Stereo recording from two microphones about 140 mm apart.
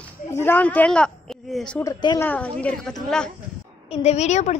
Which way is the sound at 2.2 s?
10° left (ahead or behind).